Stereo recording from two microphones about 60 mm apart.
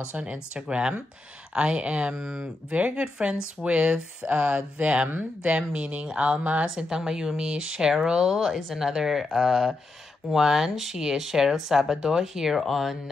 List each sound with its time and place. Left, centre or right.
0.1 s speech: centre
7.0 s speech: centre